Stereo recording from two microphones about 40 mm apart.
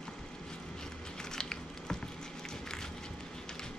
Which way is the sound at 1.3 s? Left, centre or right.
Centre.